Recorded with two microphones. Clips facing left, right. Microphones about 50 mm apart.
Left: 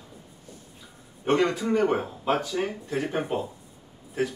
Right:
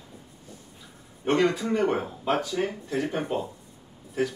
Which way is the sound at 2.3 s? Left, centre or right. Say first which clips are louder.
Even; centre.